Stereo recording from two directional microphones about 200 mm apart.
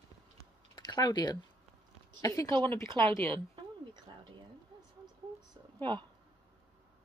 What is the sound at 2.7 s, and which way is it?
Speech, 15° left (ahead or behind).